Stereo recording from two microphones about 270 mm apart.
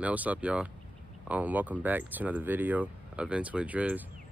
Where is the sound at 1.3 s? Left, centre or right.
Centre.